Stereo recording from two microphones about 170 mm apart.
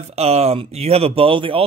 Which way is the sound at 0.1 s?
40° right (ahead or behind).